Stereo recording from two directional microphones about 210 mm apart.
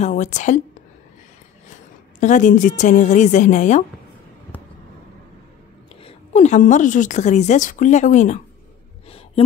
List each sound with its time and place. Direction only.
0.0 s a woman's voice: 35° left (ahead or behind)
2.1 s a woman's voice: 35° left (ahead or behind)
6.0 s a woman's voice: 35° left (ahead or behind)